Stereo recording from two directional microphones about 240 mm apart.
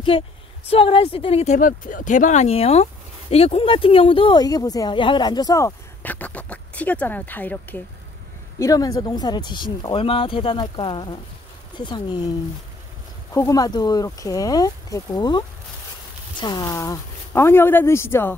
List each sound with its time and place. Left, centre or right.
0.1 s speech: left
13.3 s speech: centre